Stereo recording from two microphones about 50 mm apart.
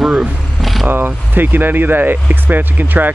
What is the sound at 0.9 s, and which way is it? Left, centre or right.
Speech, right.